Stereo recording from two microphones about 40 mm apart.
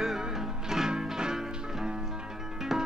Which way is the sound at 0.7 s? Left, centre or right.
Centre.